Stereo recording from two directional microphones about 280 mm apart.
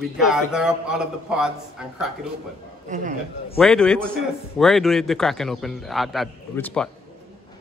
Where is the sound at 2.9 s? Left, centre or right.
Right.